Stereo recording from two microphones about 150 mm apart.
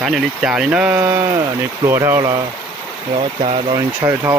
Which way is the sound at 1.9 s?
20° right (ahead or behind).